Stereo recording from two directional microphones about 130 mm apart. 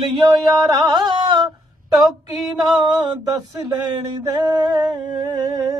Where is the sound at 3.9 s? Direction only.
30° right (ahead or behind).